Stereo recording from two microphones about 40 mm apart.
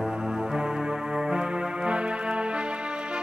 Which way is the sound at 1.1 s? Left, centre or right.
Right.